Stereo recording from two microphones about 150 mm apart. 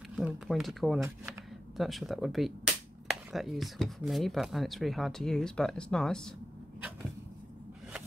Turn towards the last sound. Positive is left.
turn(degrees=-10)  # may be behind; listen again after turning